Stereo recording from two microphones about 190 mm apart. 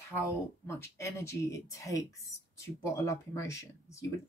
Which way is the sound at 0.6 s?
15° left (ahead or behind).